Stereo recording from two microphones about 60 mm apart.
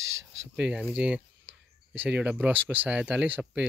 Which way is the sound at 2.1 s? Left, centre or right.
Right.